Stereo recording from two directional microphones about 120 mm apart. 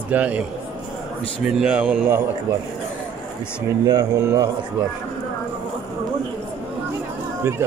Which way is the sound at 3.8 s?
30° right (ahead or behind).